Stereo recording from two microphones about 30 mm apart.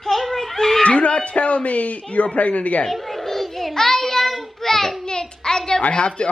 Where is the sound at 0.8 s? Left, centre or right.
Left.